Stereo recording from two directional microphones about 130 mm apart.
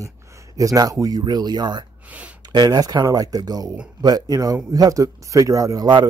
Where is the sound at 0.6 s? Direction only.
25° right (ahead or behind).